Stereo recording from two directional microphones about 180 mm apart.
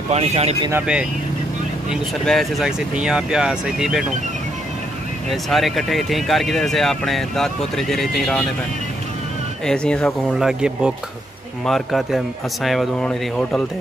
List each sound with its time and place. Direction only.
0.1 s speech: 35° right (ahead or behind)
0.6 s speech: 15° right (ahead or behind)
1.9 s speech: centre (ahead or behind)
5.3 s speech: centre (ahead or behind)
9.7 s speech: 5° left (ahead or behind)